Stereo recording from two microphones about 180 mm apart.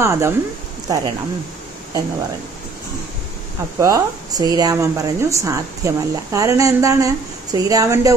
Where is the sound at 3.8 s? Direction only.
20° right (ahead or behind).